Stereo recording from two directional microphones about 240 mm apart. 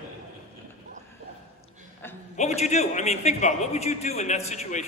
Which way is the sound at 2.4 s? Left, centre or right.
Left.